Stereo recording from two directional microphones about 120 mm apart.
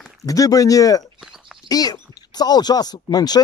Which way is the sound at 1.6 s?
35° left (ahead or behind).